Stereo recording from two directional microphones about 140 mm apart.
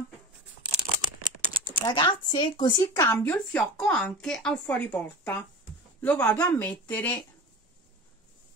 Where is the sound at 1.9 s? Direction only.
35° left (ahead or behind); by 7.3 s 15° left (ahead or behind).